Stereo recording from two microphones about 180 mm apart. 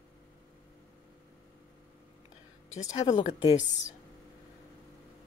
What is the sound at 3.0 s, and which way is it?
Speech, 25° left (ahead or behind).